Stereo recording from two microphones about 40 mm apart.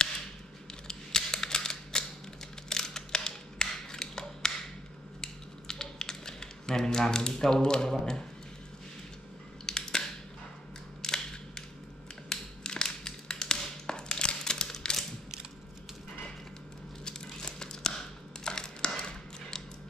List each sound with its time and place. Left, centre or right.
0.8 s a sound: centre
5.2 s tap: centre
9.7 s scissors: centre
11.0 s cap gun: centre
12.3 s tap: centre
17.0 s crumpling: centre
18.4 s a sound: centre